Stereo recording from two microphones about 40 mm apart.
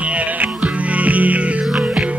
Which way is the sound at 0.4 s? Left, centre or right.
Right.